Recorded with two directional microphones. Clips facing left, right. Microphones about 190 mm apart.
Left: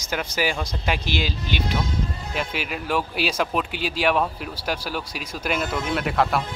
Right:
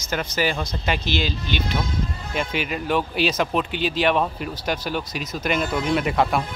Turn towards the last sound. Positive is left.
turn(degrees=0)  # may be behind; listen again after turning